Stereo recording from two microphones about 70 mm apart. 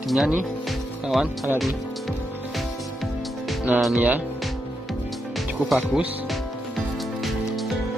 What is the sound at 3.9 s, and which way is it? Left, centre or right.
Speech, centre.